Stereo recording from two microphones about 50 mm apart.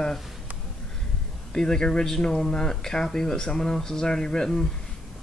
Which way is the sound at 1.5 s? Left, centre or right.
Centre.